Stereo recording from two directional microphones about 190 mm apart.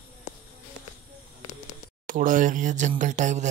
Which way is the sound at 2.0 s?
45° right (ahead or behind).